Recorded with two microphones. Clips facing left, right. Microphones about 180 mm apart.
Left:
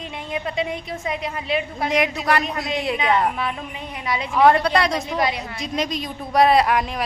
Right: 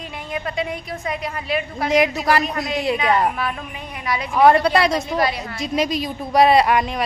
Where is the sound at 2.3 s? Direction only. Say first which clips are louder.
Right 2 dB; centre (ahead or behind).